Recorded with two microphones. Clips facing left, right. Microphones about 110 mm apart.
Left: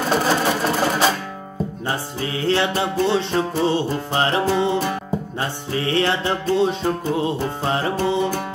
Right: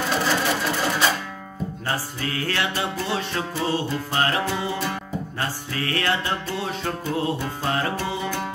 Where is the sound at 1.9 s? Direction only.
25° left (ahead or behind).